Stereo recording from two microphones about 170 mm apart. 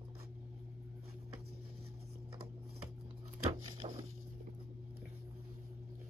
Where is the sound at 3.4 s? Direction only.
35° right (ahead or behind).